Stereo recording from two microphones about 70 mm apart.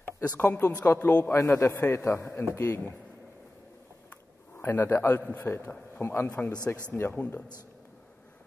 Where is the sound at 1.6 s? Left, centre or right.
Left.